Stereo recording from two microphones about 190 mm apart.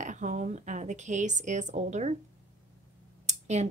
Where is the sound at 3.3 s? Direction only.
35° right (ahead or behind).